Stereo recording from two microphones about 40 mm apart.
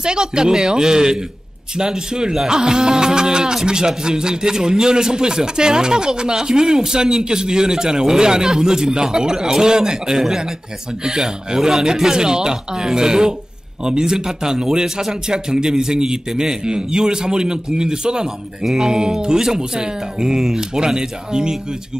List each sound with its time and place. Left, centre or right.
0.0 s a man's voice: centre